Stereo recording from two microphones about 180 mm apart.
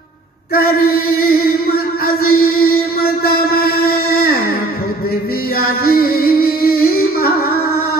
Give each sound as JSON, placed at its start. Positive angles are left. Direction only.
{"t": 0.6, "sound": "music", "side_deg": 55}
{"t": 5.6, "sound": "music", "side_deg": 55}